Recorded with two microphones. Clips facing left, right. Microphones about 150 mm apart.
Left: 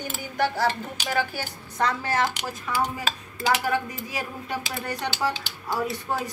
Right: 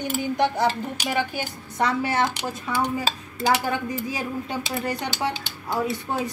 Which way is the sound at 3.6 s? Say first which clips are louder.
Right 1 dB; 25° right (ahead or behind).